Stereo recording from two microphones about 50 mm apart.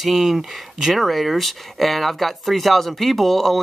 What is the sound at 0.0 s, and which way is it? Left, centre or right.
Speech, centre.